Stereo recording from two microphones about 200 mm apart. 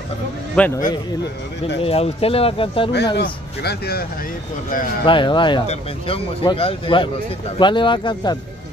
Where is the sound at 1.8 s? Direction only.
30° left (ahead or behind).